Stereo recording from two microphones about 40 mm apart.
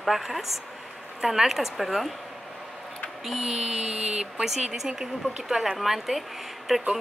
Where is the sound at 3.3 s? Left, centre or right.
Centre.